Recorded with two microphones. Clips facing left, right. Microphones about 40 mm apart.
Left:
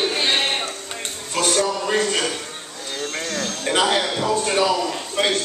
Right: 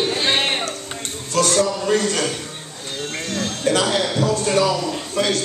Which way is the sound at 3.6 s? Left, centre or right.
Left.